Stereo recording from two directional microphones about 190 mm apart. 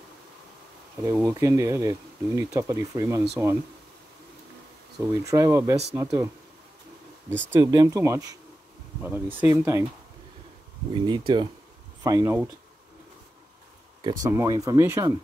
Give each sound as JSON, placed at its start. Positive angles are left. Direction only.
{"t": 1.0, "sound": "speech", "side_deg": -15}
{"t": 5.0, "sound": "speech", "side_deg": -15}
{"t": 7.5, "sound": "speech", "side_deg": -15}
{"t": 10.9, "sound": "speech", "side_deg": -25}
{"t": 14.0, "sound": "speech", "side_deg": -20}